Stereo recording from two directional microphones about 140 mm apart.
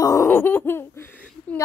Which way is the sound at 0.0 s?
25° left (ahead or behind).